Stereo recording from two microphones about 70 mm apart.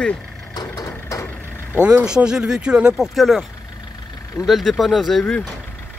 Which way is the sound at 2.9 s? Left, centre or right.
Centre.